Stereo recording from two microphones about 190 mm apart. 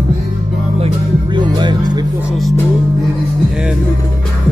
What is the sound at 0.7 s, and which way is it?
Music, 30° right (ahead or behind).